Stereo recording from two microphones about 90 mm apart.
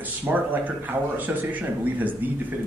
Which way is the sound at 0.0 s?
20° right (ahead or behind).